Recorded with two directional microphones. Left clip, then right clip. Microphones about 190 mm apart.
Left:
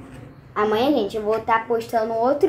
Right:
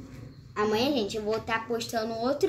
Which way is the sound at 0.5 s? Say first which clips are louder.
Left 7 dB; 25° right (ahead or behind).